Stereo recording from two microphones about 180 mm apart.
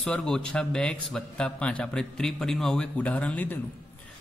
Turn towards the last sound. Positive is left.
turn(degrees=10)  # may be behind; listen again after turning